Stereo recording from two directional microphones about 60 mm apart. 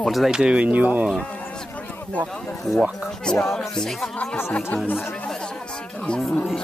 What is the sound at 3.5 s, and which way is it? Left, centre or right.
Speech, centre.